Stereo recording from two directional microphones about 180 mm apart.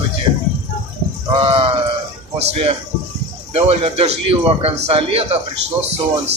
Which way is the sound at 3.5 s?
35° right (ahead or behind).